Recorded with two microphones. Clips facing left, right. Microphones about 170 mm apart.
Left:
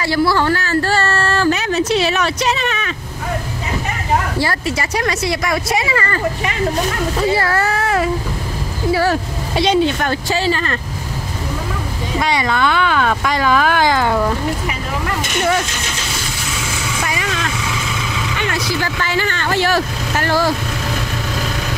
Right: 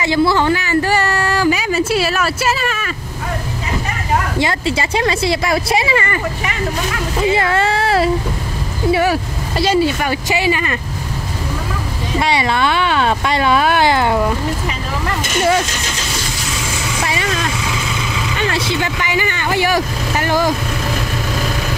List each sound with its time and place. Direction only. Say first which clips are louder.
0.0 s speech: right 1 dB; 20° right (ahead or behind)
4.4 s speech: right 2 dB; 25° right (ahead or behind)
8.9 s speech: even; 15° right (ahead or behind)
12.2 s speech: right 1 dB; 25° right (ahead or behind)
17.0 s vehicle: right 3 dB; 30° right (ahead or behind)
18.5 s speech: right 1 dB; 25° right (ahead or behind)